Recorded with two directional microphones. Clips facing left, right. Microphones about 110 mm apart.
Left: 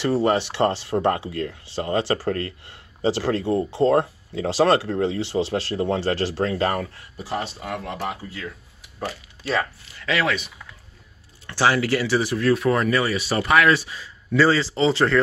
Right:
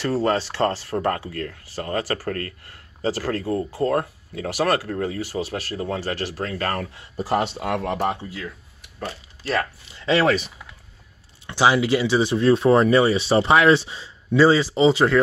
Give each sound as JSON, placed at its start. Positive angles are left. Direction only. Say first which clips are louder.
{"t": 0.0, "sound": "speech", "louder": "left 1 dB", "side_deg": 15}
{"t": 7.3, "sound": "speech", "louder": "right 5 dB", "side_deg": -75}
{"t": 9.9, "sound": "speech", "louder": "right 4 dB", "side_deg": -25}
{"t": 10.2, "sound": "speech", "louder": "right 5 dB", "side_deg": -35}
{"t": 11.4, "sound": "speech", "louder": "right 2 dB", "side_deg": -15}